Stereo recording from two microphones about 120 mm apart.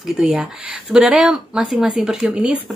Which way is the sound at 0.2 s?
5° right (ahead or behind).